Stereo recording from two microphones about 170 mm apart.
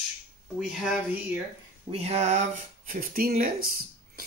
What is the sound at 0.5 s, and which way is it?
Speech, 5° right (ahead or behind).